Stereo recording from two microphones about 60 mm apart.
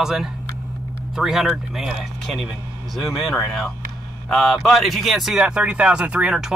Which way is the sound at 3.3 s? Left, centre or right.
Centre.